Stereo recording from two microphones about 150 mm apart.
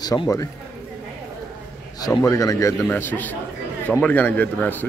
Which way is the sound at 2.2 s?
20° left (ahead or behind).